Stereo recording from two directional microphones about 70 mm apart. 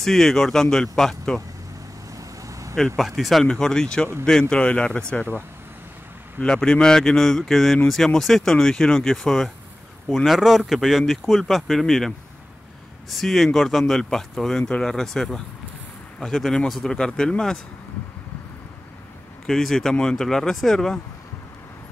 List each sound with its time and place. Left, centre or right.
0.0 s speech: centre
2.1 s vehicle: right
3.0 s speech: centre
6.4 s speech: centre
13.1 s speech: centre
19.4 s speech: centre